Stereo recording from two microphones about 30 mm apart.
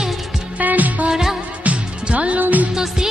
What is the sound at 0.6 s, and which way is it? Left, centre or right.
Music, right.